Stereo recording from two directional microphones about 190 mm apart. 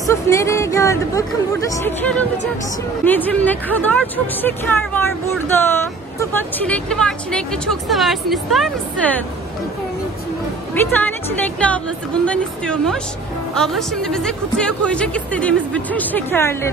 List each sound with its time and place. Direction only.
0.0 s speech: 15° left (ahead or behind)
10.7 s speech: 10° left (ahead or behind)